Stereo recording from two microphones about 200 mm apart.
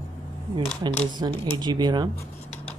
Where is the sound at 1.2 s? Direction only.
25° right (ahead or behind).